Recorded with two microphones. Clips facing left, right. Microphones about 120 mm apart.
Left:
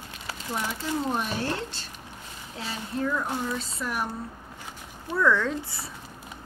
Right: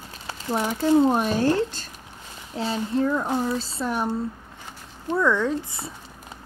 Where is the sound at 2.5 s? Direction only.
30° right (ahead or behind).